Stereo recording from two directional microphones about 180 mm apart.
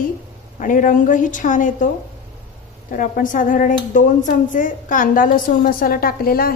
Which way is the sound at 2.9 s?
50° left (ahead or behind).